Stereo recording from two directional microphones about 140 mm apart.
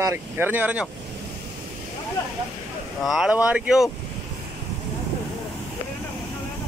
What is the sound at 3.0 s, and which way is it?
Speech, 5° right (ahead or behind).